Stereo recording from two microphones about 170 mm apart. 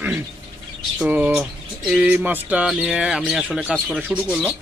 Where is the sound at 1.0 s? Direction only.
5° right (ahead or behind).